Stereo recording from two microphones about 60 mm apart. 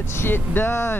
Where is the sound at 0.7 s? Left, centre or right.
Left.